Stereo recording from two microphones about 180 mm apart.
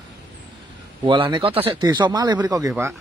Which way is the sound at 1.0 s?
30° right (ahead or behind).